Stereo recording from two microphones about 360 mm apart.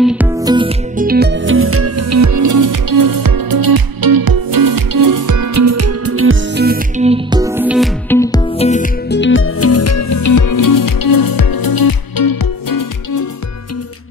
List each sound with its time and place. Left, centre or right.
0.0 s music: centre; by 13.2 s left